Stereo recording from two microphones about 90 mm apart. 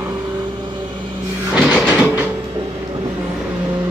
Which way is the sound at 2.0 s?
15° right (ahead or behind).